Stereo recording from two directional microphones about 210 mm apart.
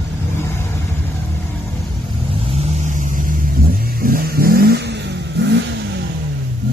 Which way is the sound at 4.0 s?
45° right (ahead or behind).